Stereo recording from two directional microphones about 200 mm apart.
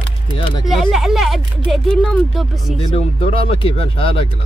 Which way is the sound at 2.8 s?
30° left (ahead or behind).